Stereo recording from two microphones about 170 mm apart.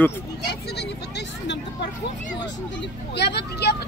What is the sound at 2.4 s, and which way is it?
Vehicle, 85° left.